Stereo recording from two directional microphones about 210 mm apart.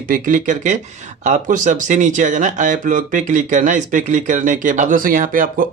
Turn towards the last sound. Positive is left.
turn(degrees=-40)  # may be behind; listen again after turning